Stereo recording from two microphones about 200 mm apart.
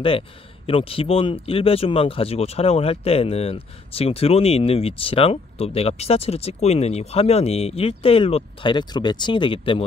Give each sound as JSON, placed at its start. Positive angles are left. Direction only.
{"t": 0.7, "sound": "speech", "side_deg": 25}